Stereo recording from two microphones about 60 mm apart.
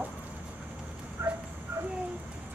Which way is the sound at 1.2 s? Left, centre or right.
Right.